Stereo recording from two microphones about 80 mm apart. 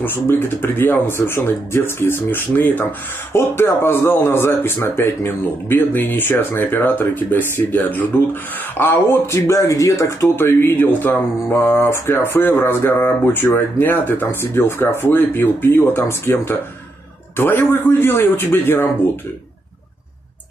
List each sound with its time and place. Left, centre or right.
0.0 s speech: left
10.2 s speech: left